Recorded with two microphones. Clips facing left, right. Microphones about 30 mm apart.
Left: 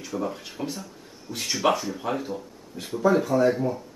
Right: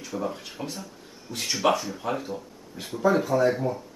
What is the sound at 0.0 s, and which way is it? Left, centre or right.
A woman's voice, centre.